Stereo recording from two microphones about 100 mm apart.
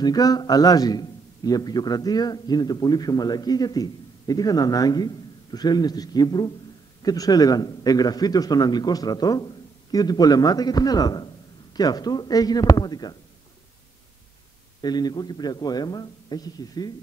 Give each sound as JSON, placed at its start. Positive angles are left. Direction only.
{"t": 0.0, "sound": "a man's voice", "side_deg": 40}
{"t": 14.8, "sound": "a man's voice", "side_deg": 45}